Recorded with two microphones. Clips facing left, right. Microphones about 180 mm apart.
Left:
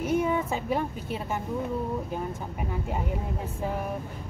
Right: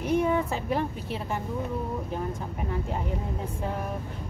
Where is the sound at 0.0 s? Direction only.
5° left (ahead or behind).